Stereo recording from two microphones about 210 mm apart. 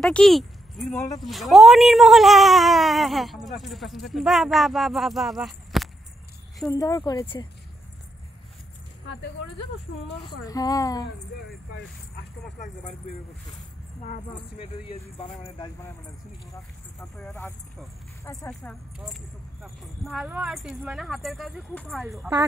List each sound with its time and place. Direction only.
0.0 s speech: centre (ahead or behind)
6.7 s speech: 20° left (ahead or behind)
10.4 s speech: 15° left (ahead or behind)
12.5 s speech: 35° left (ahead or behind)
14.3 s speech: 25° left (ahead or behind)
17.2 s speech: 10° left (ahead or behind)
18.5 s speech: 5° left (ahead or behind)